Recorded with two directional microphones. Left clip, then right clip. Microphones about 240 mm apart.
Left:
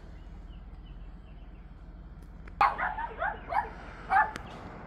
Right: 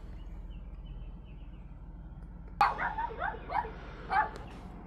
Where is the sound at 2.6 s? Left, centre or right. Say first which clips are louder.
Left 2 dB; left.